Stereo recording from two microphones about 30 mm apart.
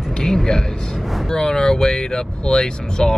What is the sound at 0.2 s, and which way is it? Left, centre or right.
Speech, left.